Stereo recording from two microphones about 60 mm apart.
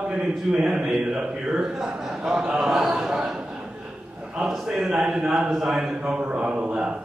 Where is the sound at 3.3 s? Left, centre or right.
Centre.